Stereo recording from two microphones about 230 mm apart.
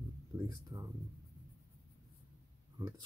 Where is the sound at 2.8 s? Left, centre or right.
Centre.